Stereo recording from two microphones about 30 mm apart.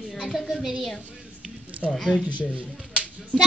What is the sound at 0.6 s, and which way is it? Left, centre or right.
Speech, centre.